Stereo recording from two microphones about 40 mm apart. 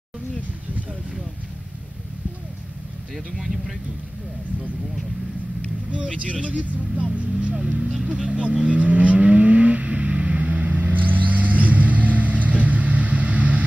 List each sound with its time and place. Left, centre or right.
3.3 s speech: centre
6.4 s speech: right
7.1 s speech: right
7.8 s speech: centre
8.1 s vehicle: right